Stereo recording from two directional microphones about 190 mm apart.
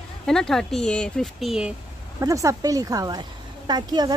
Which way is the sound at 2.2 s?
15° right (ahead or behind).